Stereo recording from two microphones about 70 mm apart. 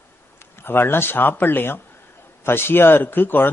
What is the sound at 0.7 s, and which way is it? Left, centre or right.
A man's voice, left.